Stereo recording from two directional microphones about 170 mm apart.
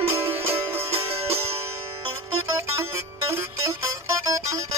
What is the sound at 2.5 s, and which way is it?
Music, 15° right (ahead or behind).